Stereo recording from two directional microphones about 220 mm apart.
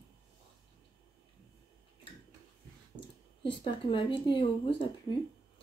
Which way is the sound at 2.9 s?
25° left (ahead or behind).